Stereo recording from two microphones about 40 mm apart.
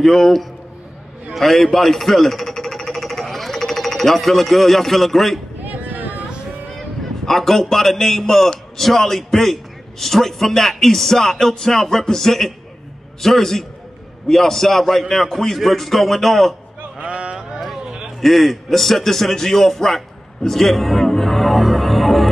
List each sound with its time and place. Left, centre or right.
0.0 s a man's voice: centre
5.6 s a sound: right
7.2 s a man's voice: centre
17.0 s a sound: right
18.2 s a man's voice: centre
20.4 s music: centre